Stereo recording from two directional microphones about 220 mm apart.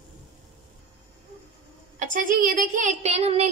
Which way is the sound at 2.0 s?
35° right (ahead or behind).